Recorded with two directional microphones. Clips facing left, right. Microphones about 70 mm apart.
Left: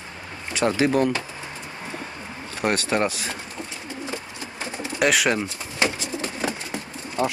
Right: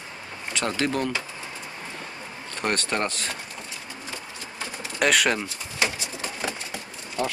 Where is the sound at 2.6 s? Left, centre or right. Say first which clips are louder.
Left 4 dB; centre.